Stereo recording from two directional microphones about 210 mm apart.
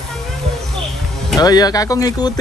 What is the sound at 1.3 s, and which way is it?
Speech, 20° left (ahead or behind).